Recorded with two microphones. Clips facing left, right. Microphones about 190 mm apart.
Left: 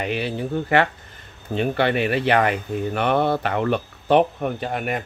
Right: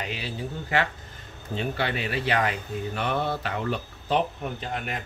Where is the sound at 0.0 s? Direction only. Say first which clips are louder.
Left 8 dB; 60° left (ahead or behind).